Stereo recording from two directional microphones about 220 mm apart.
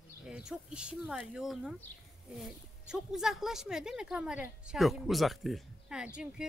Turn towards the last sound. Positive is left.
turn(degrees=-5)  # may be behind; listen again after turning